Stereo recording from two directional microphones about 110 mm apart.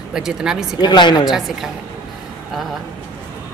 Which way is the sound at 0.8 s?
40° left (ahead or behind).